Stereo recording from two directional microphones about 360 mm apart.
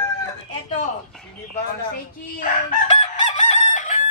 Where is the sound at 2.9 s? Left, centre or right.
Centre.